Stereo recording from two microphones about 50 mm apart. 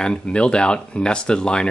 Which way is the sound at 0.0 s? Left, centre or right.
Centre.